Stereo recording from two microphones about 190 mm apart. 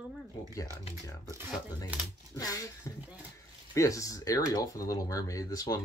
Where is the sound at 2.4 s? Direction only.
20° left (ahead or behind).